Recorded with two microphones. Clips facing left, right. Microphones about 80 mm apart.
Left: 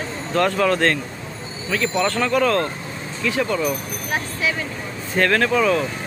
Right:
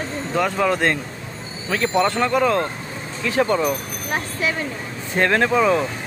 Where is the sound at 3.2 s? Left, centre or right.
Right.